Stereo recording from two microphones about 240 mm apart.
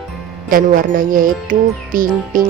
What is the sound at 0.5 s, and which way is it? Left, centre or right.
Speech, right.